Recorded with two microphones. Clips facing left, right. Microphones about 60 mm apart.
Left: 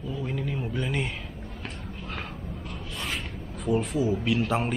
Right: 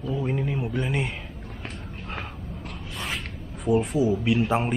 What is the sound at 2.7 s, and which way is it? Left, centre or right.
Speech, centre.